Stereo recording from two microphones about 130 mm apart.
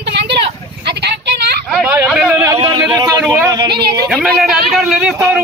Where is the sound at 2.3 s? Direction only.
20° right (ahead or behind).